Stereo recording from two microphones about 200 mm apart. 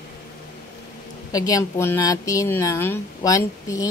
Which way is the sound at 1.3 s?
20° left (ahead or behind).